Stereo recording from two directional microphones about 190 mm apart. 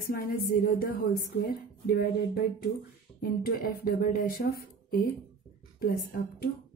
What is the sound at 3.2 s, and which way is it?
A woman's voice, 50° left (ahead or behind).